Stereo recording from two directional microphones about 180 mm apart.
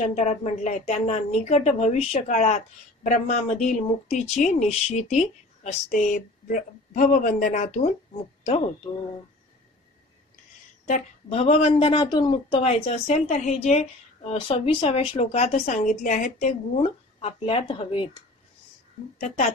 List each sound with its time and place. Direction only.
0.1 s a woman's voice: 40° left (ahead or behind)
10.9 s a woman's voice: 35° left (ahead or behind)
19.1 s a woman's voice: 40° left (ahead or behind)